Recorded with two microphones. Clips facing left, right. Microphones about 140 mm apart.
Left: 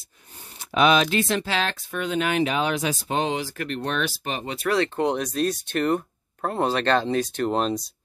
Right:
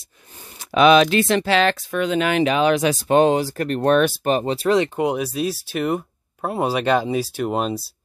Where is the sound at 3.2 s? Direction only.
45° right (ahead or behind).